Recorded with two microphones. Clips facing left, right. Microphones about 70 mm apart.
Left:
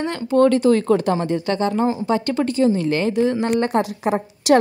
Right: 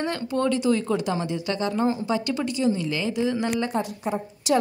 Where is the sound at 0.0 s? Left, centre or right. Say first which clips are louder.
Left 5 dB; left.